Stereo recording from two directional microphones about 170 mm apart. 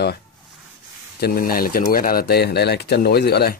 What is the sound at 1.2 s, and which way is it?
Speech, 60° left (ahead or behind).